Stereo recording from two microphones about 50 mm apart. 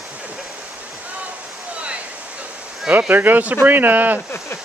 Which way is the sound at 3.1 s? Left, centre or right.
Right.